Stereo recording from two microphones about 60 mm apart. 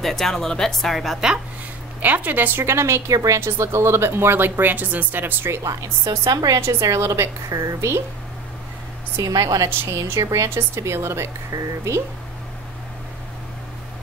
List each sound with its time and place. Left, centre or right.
0.0 s speech: centre
2.0 s a woman's voice: right
2.6 s a woman's voice: right
3.1 s a woman's voice: right
3.3 s speech: right
5.6 s speech: right
6.3 s a woman's voice: right
6.6 s a woman's voice: right
9.2 s speech: right
10.0 s a woman's voice: right